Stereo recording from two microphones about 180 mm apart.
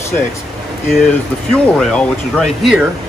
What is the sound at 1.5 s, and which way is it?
Speech, 5° left (ahead or behind).